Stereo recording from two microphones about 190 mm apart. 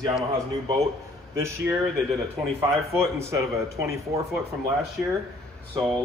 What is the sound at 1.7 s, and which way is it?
Speech, 15° right (ahead or behind).